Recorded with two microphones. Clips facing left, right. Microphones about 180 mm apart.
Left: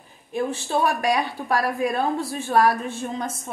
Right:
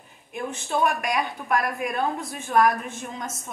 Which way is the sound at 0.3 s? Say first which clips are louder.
Left 4 dB; 35° left (ahead or behind).